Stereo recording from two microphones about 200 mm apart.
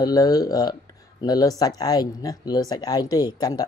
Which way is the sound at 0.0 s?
20° left (ahead or behind).